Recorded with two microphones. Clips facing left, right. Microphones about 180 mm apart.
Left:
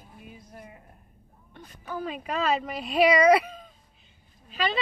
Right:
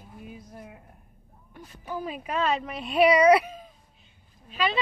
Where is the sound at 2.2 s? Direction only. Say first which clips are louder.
Even; centre (ahead or behind).